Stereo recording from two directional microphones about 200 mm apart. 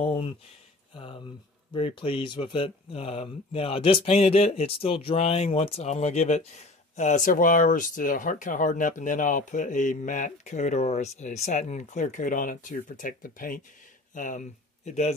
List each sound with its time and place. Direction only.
0.0 s speech: 30° left (ahead or behind)